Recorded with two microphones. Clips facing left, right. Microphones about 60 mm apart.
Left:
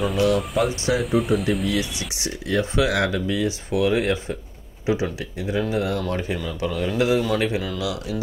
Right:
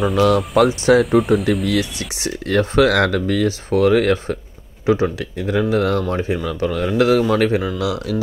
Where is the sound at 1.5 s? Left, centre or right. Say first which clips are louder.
Right 4 dB; right.